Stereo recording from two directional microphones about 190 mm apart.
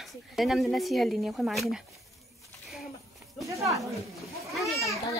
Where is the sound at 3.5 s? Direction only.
15° right (ahead or behind).